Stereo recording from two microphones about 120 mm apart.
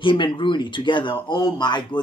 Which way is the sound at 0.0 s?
45° left (ahead or behind).